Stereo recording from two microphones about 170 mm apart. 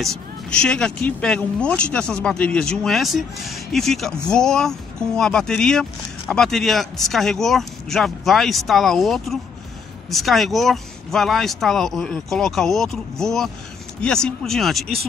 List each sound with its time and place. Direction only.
0.0 s speech: 5° left (ahead or behind)